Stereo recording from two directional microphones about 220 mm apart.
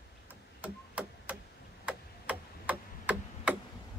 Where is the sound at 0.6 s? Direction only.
5° right (ahead or behind).